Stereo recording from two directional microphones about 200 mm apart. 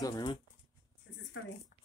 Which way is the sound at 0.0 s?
20° left (ahead or behind).